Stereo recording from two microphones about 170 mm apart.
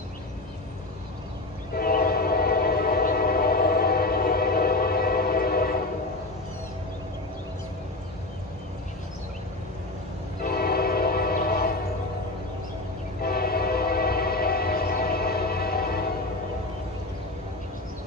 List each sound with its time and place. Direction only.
1.8 s train: 60° left (ahead or behind)
10.4 s train: 60° left (ahead or behind)
13.2 s train: 65° left (ahead or behind)